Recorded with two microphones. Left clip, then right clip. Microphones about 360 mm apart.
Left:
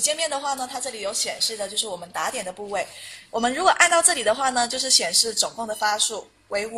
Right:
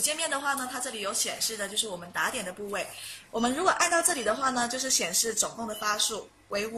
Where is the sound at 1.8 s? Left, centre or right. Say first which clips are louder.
Left 3 dB; centre.